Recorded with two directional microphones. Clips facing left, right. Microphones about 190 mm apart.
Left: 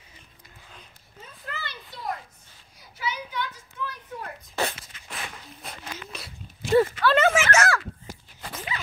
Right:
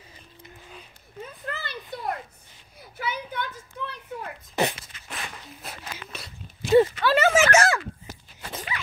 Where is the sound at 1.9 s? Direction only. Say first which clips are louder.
Right 2 dB; 55° right (ahead or behind).